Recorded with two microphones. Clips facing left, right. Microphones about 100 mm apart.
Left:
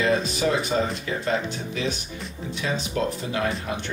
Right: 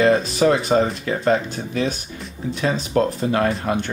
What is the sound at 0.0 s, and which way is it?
Speech, 55° right (ahead or behind).